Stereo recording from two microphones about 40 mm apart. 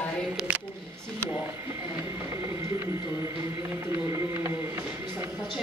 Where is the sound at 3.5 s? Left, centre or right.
Right.